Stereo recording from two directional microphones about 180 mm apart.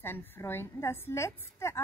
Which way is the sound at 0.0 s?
10° left (ahead or behind).